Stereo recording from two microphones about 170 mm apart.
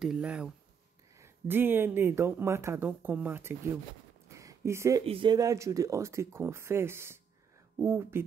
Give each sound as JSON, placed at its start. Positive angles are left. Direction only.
{"t": 0.0, "sound": "speech", "side_deg": -5}
{"t": 4.3, "sound": "a sound", "side_deg": -20}
{"t": 5.0, "sound": "speech", "side_deg": -30}